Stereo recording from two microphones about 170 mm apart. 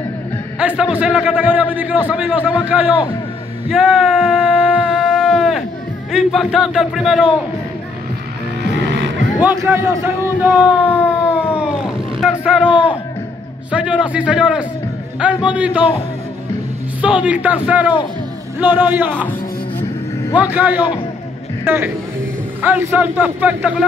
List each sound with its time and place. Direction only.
0.6 s a man's voice: 5° right (ahead or behind)
3.7 s a sound: centre (ahead or behind)
6.1 s a man's voice: centre (ahead or behind)
8.7 s vehicle: 90° right
9.4 s a sound: 10° right (ahead or behind)
13.7 s a man's voice: 5° right (ahead or behind)
17.0 s a man's voice: 5° right (ahead or behind)
20.3 s a man's voice: 10° right (ahead or behind)